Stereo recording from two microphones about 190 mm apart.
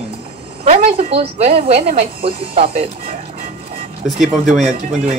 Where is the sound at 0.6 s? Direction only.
35° right (ahead or behind).